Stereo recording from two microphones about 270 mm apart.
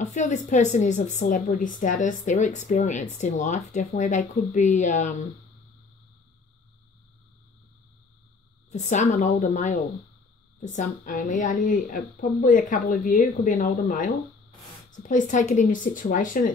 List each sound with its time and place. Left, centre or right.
0.0 s speech: left
8.6 s a woman's voice: left